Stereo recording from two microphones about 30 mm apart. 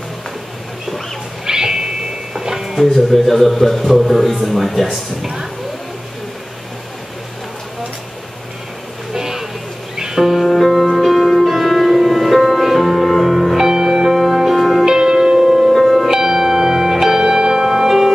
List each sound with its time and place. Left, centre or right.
1.4 s music: right
2.8 s speech: centre
5.2 s speech: centre
9.1 s a sound: centre
9.9 s music: centre
10.4 s music: centre
13.6 s music: centre
14.1 s music: centre
14.9 s music: centre
15.7 s music: centre
16.1 s music: centre